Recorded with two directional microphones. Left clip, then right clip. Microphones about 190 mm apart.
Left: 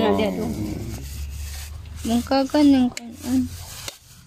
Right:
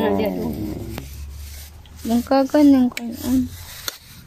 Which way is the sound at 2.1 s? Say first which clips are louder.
Right 3 dB; 15° right (ahead or behind).